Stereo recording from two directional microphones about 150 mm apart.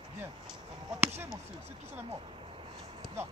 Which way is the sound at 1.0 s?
15° right (ahead or behind).